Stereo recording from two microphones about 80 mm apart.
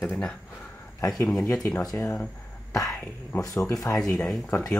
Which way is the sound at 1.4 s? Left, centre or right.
Left.